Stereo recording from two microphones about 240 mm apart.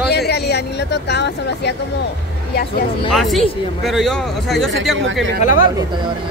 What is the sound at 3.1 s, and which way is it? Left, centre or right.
Speech, centre.